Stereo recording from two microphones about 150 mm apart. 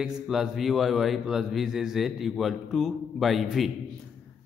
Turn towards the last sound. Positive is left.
turn(degrees=0)  # may be behind; listen again after turning